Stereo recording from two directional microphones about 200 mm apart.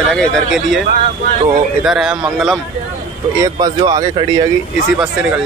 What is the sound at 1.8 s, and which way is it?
Speech, 5° right (ahead or behind).